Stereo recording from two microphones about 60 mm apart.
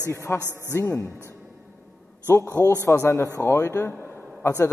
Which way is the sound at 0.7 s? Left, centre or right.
Left.